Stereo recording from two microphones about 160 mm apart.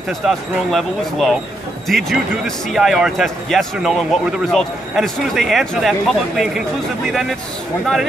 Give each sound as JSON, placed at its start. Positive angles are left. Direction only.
{"t": 0.2, "sound": "speech", "side_deg": 0}